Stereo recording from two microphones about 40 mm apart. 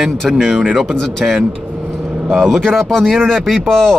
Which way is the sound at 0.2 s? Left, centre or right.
Centre.